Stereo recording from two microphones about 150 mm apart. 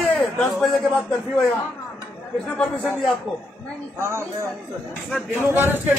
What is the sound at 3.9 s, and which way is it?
Speech, 15° right (ahead or behind).